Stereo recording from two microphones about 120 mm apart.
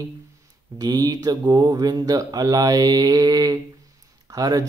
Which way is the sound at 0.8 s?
35° right (ahead or behind).